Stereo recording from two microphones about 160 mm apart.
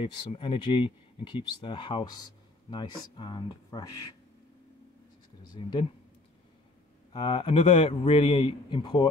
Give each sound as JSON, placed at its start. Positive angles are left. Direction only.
{"t": 0.0, "sound": "speech", "side_deg": 35}
{"t": 5.5, "sound": "speech", "side_deg": 30}
{"t": 7.1, "sound": "speech", "side_deg": 30}